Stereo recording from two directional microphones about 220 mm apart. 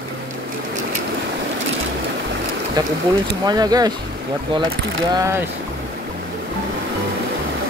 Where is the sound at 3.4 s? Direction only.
20° right (ahead or behind).